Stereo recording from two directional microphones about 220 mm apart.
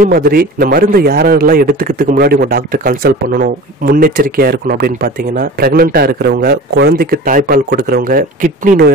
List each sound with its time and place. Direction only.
0.0 s speech: 45° right (ahead or behind)